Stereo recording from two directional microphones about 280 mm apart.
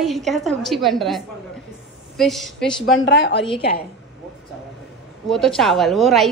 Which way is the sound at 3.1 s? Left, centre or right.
Left.